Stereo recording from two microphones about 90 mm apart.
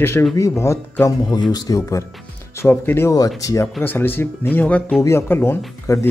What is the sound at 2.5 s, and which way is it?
Speech, 25° left (ahead or behind).